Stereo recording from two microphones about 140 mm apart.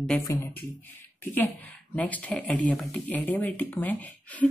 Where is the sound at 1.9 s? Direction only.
10° left (ahead or behind).